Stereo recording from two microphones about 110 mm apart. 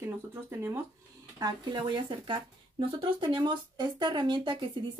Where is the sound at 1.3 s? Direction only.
35° right (ahead or behind).